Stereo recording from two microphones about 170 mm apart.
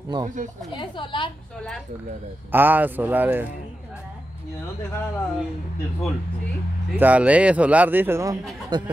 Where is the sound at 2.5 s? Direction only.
10° right (ahead or behind).